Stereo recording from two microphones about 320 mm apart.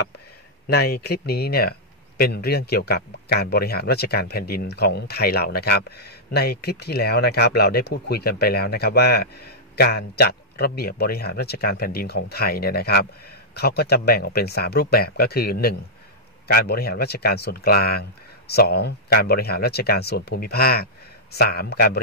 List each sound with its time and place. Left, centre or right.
0.7 s speech: left